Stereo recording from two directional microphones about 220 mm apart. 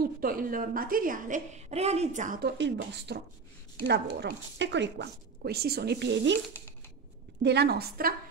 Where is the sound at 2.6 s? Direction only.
50° right (ahead or behind).